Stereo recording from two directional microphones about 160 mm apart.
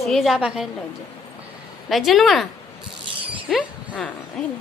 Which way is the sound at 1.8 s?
Centre (ahead or behind).